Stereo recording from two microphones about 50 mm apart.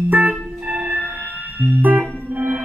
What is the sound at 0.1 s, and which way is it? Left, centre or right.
Music, right.